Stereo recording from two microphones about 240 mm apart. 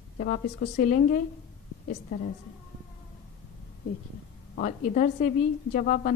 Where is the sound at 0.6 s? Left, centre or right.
Left.